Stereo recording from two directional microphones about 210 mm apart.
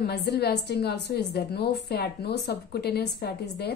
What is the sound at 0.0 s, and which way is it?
A woman's voice, 50° left (ahead or behind).